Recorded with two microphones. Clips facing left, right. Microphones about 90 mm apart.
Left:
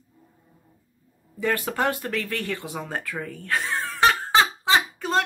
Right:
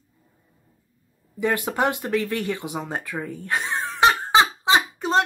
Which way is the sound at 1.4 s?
15° right (ahead or behind).